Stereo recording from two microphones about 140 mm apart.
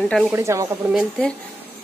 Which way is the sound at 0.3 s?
20° right (ahead or behind).